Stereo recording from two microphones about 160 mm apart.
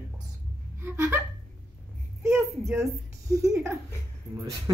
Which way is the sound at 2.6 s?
20° right (ahead or behind).